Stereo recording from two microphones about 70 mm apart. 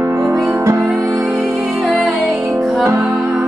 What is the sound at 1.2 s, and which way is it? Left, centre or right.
Music, centre.